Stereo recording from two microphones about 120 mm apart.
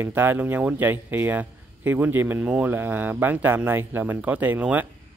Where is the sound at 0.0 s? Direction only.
15° right (ahead or behind).